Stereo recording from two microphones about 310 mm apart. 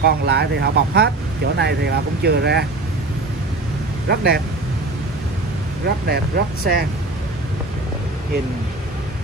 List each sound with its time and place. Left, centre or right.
0.0 s speech: right
4.1 s speech: right
6.0 s speech: right